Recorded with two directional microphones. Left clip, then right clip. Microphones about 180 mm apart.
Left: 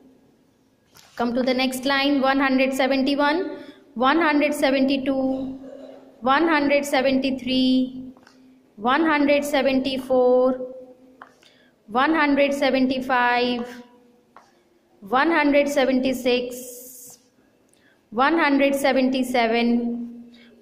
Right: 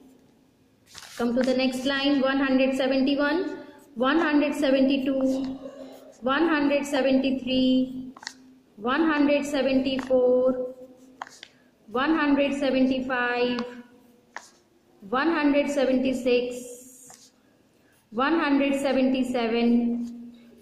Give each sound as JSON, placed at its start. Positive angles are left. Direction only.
{"t": 1.1, "sound": "a woman's voice", "side_deg": 15}
{"t": 6.2, "sound": "a woman's voice", "side_deg": 15}
{"t": 8.8, "sound": "a woman's voice", "side_deg": 15}
{"t": 11.9, "sound": "a woman's voice", "side_deg": 15}
{"t": 15.0, "sound": "a woman's voice", "side_deg": 15}
{"t": 18.1, "sound": "a woman's voice", "side_deg": 15}